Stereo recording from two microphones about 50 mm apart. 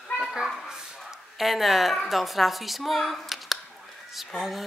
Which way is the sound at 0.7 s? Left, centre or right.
Centre.